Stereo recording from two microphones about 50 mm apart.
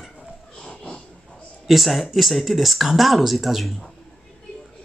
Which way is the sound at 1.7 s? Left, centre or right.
Centre.